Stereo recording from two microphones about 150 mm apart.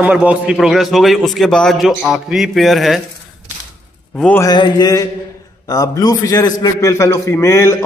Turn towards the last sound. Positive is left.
turn(degrees=20)  # may be behind; listen again after turning